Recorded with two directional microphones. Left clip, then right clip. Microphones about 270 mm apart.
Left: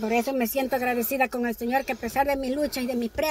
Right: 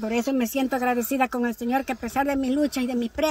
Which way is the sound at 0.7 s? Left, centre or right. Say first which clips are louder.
Right 1 dB; right.